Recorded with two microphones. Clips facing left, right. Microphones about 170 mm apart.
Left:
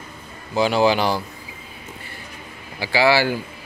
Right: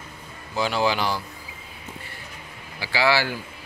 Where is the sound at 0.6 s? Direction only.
20° left (ahead or behind).